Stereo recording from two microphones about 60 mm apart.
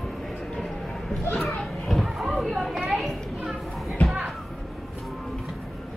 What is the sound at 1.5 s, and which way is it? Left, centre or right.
Children playing, centre.